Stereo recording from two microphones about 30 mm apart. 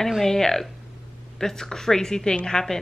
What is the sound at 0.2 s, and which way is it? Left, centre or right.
A woman's voice, centre.